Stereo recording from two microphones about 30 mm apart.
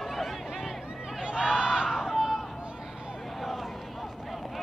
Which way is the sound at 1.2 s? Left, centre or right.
Right.